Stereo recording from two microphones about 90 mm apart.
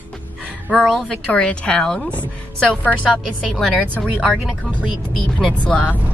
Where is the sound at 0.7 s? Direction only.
5° left (ahead or behind).